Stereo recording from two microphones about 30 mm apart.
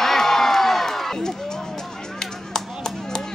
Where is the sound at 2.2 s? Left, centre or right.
Left.